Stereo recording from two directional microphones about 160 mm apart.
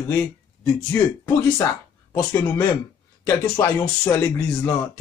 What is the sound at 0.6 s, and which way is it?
Speech, 15° left (ahead or behind).